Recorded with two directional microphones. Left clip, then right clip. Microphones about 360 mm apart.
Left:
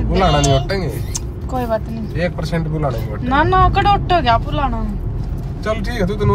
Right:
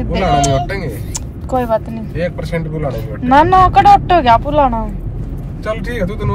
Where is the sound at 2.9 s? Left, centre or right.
Centre.